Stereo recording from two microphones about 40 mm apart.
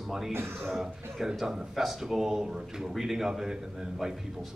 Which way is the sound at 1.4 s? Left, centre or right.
Centre.